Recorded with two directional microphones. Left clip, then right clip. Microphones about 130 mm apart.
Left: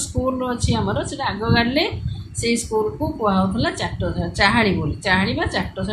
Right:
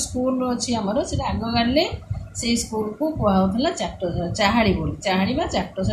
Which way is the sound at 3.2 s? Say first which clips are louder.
Left 1 dB; 5° left (ahead or behind).